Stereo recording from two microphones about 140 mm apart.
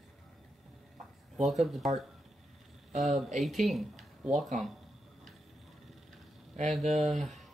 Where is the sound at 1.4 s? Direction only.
Centre (ahead or behind).